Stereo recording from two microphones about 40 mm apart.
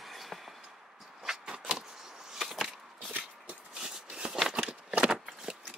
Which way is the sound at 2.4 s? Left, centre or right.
Centre.